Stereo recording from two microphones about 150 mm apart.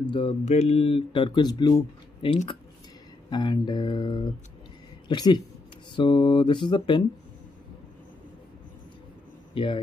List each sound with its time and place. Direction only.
0.1 s speech: 40° left (ahead or behind)
3.3 s a sound: 30° left (ahead or behind)
5.0 s speech: 30° left (ahead or behind)
9.5 s a man's voice: 35° left (ahead or behind)